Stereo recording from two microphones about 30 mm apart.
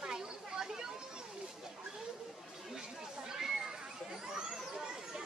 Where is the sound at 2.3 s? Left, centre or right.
Centre.